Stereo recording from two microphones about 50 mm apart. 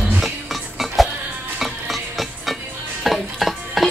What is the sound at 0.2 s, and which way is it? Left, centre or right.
Music, centre.